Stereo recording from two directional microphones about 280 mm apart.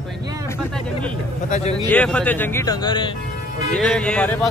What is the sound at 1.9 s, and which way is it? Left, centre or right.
Speech, centre.